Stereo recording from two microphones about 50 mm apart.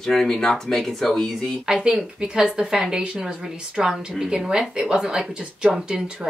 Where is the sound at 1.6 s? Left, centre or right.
Centre.